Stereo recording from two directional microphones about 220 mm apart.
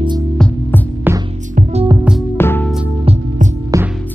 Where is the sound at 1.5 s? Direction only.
25° right (ahead or behind).